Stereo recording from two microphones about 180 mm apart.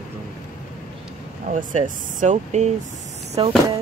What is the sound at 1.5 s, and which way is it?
Speech, 45° right (ahead or behind).